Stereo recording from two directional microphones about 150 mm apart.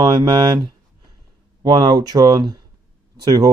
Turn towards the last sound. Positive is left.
turn(degrees=-25)  # may be behind; listen again after turning